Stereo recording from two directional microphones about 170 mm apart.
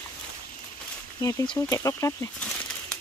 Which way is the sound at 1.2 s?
20° left (ahead or behind).